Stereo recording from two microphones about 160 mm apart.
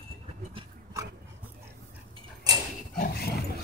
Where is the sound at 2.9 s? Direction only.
70° left (ahead or behind).